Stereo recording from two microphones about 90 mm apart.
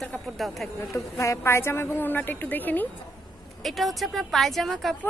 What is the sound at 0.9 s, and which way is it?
Speech, 35° left (ahead or behind).